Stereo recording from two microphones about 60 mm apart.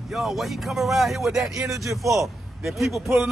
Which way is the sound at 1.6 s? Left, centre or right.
Right.